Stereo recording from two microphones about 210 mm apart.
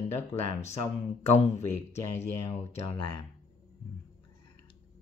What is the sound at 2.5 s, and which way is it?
Speech, 30° left (ahead or behind).